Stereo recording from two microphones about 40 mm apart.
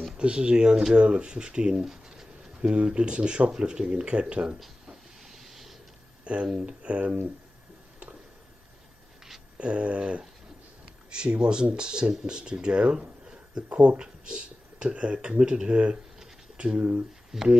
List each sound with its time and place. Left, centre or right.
0.2 s speech: right
2.6 s speech: right
4.8 s hiss: centre
6.2 s speech: right
9.6 s speech: right
13.9 s speech: right
17.3 s speech: centre